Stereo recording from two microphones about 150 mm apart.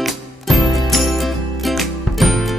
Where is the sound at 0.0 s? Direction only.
Centre (ahead or behind).